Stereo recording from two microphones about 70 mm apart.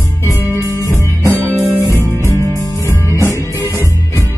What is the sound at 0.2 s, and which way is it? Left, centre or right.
Music, left.